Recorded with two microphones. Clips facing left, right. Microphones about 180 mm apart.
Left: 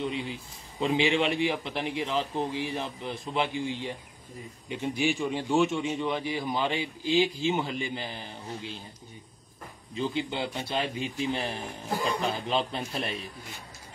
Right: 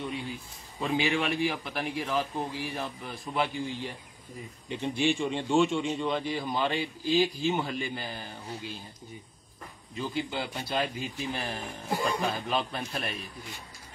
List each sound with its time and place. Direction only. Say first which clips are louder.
0.7 s a man's voice: left 3 dB; 25° left (ahead or behind)
9.9 s a man's voice: left 2 dB; 25° left (ahead or behind)